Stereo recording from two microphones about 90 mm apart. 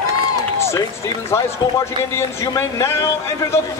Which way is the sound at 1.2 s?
30° left (ahead or behind).